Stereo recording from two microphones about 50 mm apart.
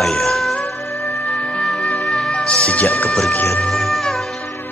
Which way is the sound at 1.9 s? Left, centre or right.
Left.